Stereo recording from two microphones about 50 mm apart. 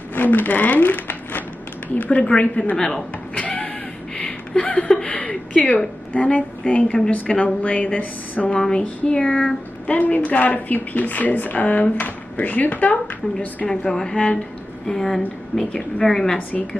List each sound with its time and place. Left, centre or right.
0.1 s speech: left; by 3.4 s centre
3.4 s a sound: left
6.1 s speech: left
8.6 s speech: centre; by 13.7 s left
13.7 s a woman's voice: centre